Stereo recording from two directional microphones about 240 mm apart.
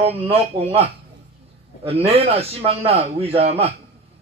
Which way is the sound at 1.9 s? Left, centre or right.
Right.